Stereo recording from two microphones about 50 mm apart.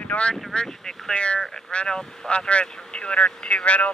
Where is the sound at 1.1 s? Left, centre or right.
Left.